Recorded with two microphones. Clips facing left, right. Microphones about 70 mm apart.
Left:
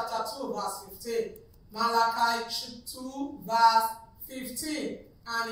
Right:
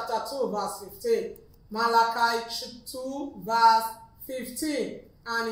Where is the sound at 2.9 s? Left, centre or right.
Right.